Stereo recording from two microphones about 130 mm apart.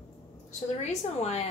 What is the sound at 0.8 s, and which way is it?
Speech, 60° left (ahead or behind).